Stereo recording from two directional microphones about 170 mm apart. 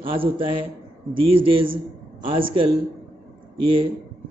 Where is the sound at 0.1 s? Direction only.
30° right (ahead or behind).